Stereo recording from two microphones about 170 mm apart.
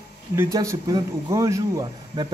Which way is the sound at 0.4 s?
20° right (ahead or behind).